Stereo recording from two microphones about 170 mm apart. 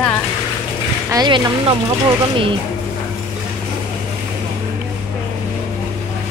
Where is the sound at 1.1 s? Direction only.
25° right (ahead or behind).